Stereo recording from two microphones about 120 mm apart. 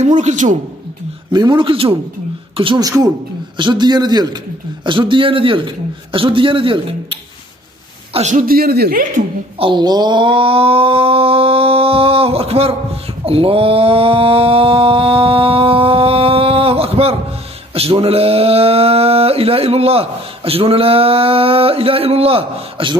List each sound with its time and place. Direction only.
0.0 s a man's voice: 80° right
1.3 s speech: 35° right (ahead or behind)
2.8 s a man's voice: 30° right (ahead or behind); by 7.2 s 45° right (ahead or behind)
8.1 s a man's voice: 80° right
9.6 s a sound: 40° right (ahead or behind)
17.7 s speech: 55° right (ahead or behind)